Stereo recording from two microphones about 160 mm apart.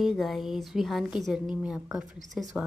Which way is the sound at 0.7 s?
Centre (ahead or behind).